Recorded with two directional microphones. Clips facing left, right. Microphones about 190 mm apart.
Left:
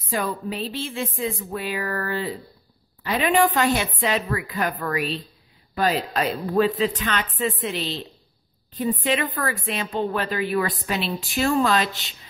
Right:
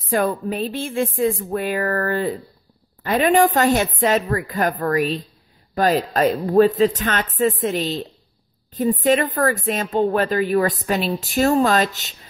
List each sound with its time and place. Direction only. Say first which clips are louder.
0.0 s a woman's voice: right 6 dB; 50° right (ahead or behind)